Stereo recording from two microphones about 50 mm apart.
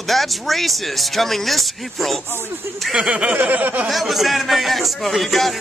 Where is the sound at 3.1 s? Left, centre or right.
Right.